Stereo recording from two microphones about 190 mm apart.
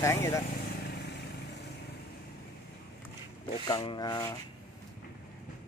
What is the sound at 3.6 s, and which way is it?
Speech, 25° left (ahead or behind).